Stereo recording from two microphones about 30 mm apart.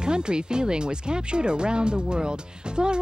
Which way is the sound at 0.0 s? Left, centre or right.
Right.